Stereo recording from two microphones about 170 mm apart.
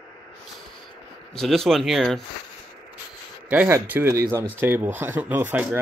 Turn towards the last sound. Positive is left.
turn(degrees=-10)  # may be behind; listen again after turning